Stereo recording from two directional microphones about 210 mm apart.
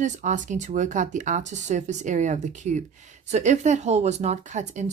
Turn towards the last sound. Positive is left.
turn(degrees=-35)  # may be behind; listen again after turning